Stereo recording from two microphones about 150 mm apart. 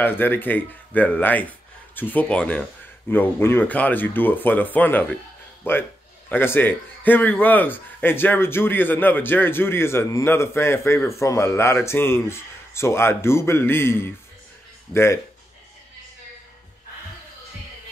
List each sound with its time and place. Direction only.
0.0 s a man's voice: 15° left (ahead or behind)